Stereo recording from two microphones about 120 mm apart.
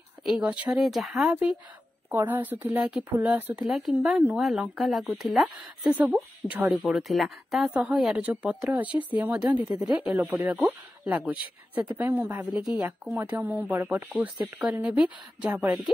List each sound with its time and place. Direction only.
0.2 s speech: 5° right (ahead or behind)
4.4 s speech: centre (ahead or behind)
5.9 s speech: 10° right (ahead or behind)
6.9 s speech: centre (ahead or behind)
13.1 s speech: 15° right (ahead or behind)